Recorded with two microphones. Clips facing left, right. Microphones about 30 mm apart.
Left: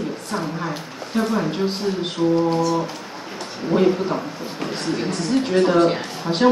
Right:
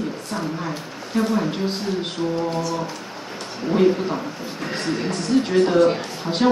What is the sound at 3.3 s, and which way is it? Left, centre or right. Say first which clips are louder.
Speech: left 1 dB; centre.